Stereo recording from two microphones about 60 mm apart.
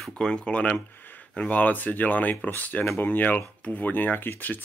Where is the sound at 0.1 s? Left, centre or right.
Centre.